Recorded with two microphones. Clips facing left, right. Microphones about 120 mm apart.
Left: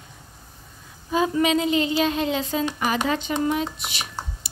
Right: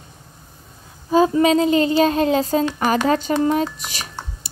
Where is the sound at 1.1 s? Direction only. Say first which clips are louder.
Right 6 dB; 35° right (ahead or behind).